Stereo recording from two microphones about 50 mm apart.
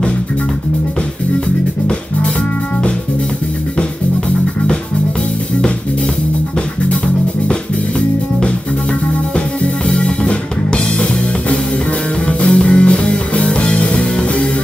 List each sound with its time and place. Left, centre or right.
9.8 s music: left